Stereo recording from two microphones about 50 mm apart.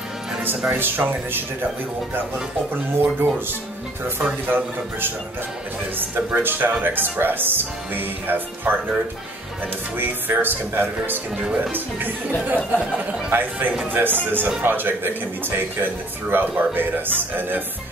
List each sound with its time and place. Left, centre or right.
0.7 s speech: right
2.7 s speech: right
4.5 s speech: right
9.9 s speech: right